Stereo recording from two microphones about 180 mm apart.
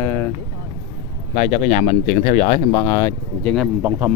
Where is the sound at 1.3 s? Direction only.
40° left (ahead or behind).